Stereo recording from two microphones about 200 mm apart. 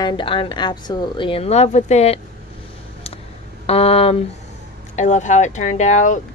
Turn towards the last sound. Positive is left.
turn(degrees=35)  # may be behind; listen again after turning